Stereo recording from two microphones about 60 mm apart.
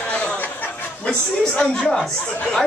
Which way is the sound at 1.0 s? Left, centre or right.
Centre.